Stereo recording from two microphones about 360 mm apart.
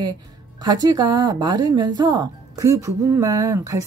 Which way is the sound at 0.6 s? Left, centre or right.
Centre.